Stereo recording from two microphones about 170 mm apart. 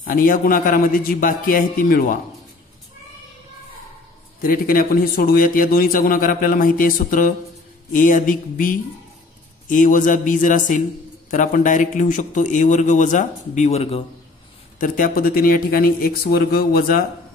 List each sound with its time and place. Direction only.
0.0 s speech: 55° left (ahead or behind)
4.4 s a man's voice: 55° left (ahead or behind); by 14.0 s 35° left (ahead or behind)
14.8 s speech: 55° left (ahead or behind)